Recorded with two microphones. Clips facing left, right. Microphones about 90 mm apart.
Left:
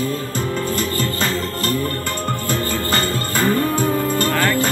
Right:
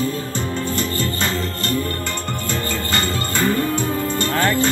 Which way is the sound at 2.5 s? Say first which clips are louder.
Left 2 dB; 50° left (ahead or behind).